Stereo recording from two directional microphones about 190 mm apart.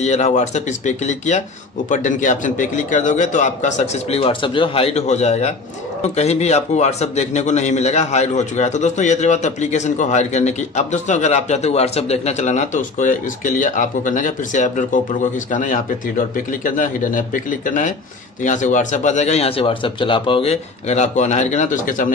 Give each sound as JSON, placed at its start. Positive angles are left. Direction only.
{"t": 0.0, "sound": "a man's voice", "side_deg": 35}